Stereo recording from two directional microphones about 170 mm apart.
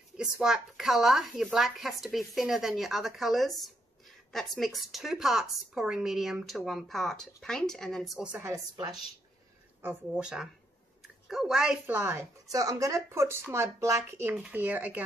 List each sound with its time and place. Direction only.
0.2 s a woman's voice: 5° right (ahead or behind)
8.4 s speech: 20° right (ahead or behind)
9.8 s a woman's voice: 10° right (ahead or behind)
11.8 s speech: 15° right (ahead or behind)